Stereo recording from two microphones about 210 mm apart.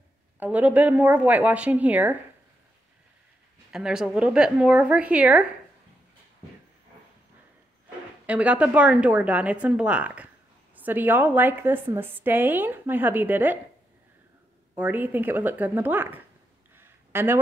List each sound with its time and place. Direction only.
0.4 s a woman's voice: 5° right (ahead or behind)
3.7 s a woman's voice: 5° right (ahead or behind)
8.3 s a woman's voice: 5° right (ahead or behind)
14.8 s a woman's voice: 10° right (ahead or behind)
16.7 s a sound: 10° right (ahead or behind)